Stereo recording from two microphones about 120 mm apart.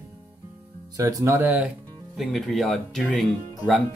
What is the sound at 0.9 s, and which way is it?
Speech, 30° right (ahead or behind).